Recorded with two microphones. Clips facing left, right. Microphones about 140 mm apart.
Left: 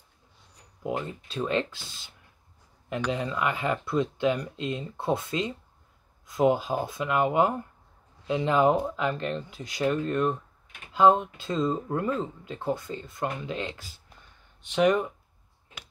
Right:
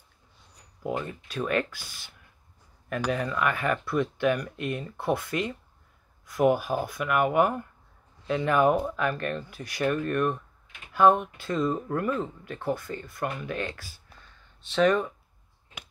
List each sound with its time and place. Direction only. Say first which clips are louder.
0.8 s speech: even; 20° left (ahead or behind)